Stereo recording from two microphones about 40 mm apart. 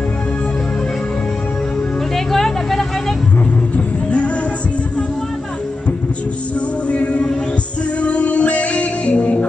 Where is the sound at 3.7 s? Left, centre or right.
Left.